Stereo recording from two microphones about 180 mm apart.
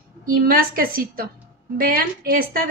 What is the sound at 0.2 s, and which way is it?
A woman's voice, 55° right (ahead or behind).